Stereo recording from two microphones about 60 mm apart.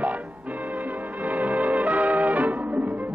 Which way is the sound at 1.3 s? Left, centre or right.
Right.